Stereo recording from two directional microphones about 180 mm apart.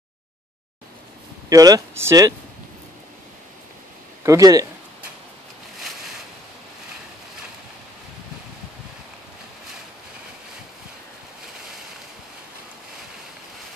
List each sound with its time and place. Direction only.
1.5 s speech: 20° right (ahead or behind)
4.2 s speech: 20° right (ahead or behind)